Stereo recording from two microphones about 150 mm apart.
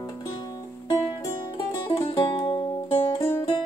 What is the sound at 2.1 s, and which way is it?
Music, 30° left (ahead or behind).